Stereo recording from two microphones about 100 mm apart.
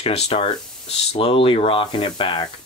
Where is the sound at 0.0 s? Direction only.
85° left.